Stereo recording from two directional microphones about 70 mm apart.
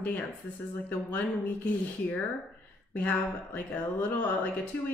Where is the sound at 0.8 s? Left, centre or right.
Left.